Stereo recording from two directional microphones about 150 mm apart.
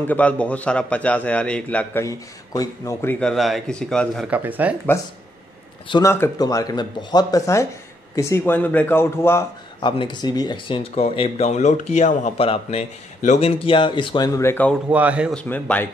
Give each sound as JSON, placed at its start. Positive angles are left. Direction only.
{"t": 0.0, "sound": "a man's voice", "side_deg": 10}
{"t": 2.0, "sound": "speech", "side_deg": 25}
{"t": 4.3, "sound": "speech", "side_deg": -10}
{"t": 6.0, "sound": "a man's voice", "side_deg": 20}
{"t": 9.8, "sound": "speech", "side_deg": 30}
{"t": 14.9, "sound": "speech", "side_deg": -10}
{"t": 15.3, "sound": "a man's voice", "side_deg": 10}